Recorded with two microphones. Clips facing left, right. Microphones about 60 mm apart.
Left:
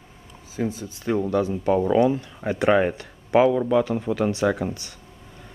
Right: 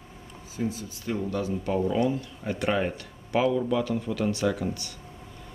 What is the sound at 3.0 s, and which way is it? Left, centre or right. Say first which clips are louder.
Speech: left 7 dB; left.